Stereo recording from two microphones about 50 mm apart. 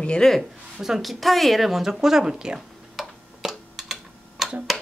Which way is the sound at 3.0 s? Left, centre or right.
Centre.